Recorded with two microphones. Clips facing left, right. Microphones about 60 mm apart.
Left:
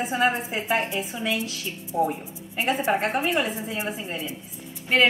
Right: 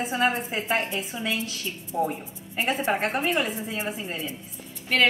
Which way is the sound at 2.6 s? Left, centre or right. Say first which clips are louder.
Left 2 dB; centre.